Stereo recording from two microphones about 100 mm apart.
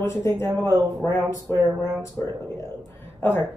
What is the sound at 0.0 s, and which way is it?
Speech, 25° left (ahead or behind).